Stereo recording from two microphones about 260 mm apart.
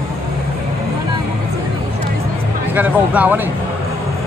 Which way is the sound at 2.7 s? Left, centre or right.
Centre.